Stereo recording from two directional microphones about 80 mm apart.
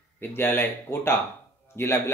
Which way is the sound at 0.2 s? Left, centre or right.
Left.